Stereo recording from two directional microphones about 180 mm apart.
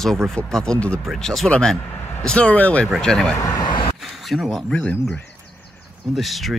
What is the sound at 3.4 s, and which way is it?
Speech, 20° left (ahead or behind).